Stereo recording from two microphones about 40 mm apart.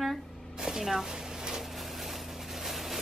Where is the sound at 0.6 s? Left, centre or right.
Centre.